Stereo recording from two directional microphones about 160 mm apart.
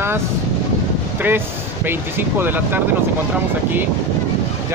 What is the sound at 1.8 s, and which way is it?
Speech, 15° right (ahead or behind).